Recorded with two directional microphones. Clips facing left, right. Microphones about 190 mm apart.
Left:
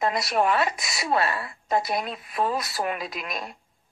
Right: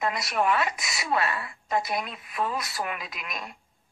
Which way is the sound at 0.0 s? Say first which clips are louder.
Left 3 dB; 35° left (ahead or behind).